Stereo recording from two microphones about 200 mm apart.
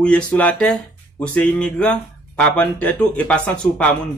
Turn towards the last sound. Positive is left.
turn(degrees=5)  # may be behind; listen again after turning